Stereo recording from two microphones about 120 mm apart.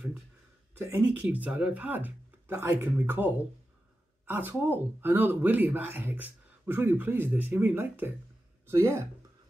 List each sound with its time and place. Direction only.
0.7 s speech: 15° right (ahead or behind)